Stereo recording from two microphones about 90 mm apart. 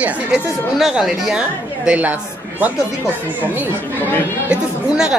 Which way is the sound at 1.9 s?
15° right (ahead or behind).